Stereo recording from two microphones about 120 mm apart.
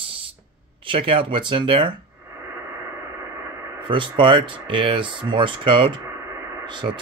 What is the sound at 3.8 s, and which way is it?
Speech, 45° right (ahead or behind).